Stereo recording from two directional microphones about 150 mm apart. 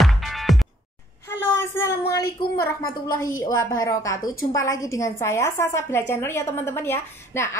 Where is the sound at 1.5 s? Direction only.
15° left (ahead or behind).